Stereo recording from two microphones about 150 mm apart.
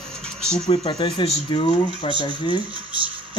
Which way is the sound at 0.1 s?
5° left (ahead or behind).